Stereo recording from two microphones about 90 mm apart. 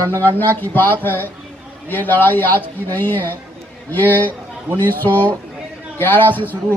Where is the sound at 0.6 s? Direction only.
20° left (ahead or behind).